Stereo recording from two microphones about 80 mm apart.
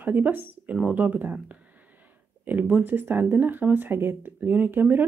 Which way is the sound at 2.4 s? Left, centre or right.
Right.